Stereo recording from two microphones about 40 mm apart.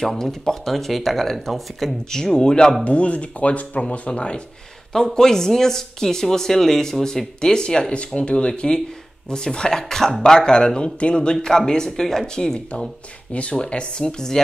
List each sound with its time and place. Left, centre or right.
0.2 s speech: centre
2.0 s speech: centre
2.8 s speech: left
4.9 s speech: centre
11.4 s speech: centre